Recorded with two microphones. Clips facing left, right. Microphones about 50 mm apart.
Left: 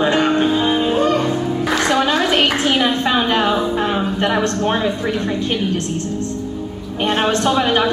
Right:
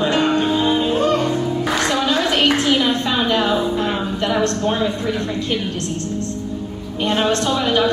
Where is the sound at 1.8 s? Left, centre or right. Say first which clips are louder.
Left 3 dB; left.